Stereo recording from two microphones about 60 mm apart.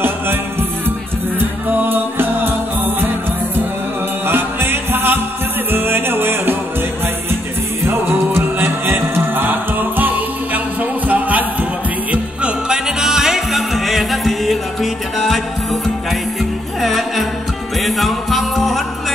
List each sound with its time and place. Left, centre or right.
0.0 s music: right
4.3 s music: right
7.8 s music: right; by 19.1 s centre